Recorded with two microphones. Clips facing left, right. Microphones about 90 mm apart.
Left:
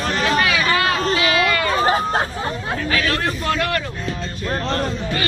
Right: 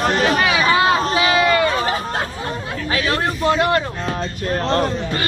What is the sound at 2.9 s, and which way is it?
Speech, 25° right (ahead or behind).